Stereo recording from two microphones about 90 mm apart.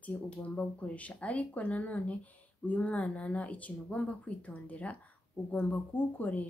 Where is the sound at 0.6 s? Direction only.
15° left (ahead or behind).